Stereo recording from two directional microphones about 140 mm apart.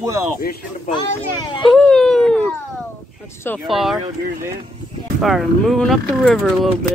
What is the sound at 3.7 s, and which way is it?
Speech, centre (ahead or behind).